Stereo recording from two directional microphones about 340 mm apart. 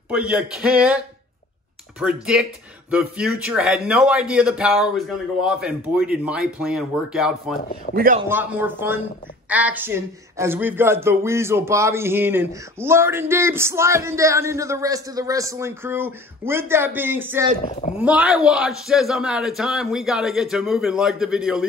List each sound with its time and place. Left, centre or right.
0.1 s a man's voice: centre
2.0 s a man's voice: centre
7.9 s speech: right
8.3 s a man's voice: centre
17.6 s speech: left
18.0 s a man's voice: centre